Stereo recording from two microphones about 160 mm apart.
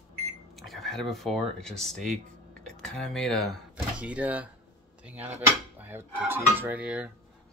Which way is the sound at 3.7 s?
10° right (ahead or behind).